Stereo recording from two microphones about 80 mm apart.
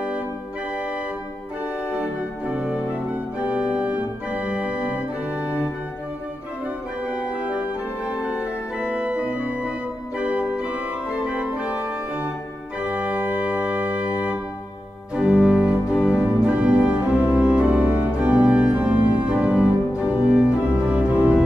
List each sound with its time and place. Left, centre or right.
1.9 s organ: centre
7.1 s music: centre
12.8 s organ: centre